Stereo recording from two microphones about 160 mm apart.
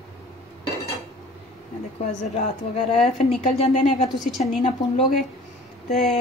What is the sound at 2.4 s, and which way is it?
Speech, 45° left (ahead or behind).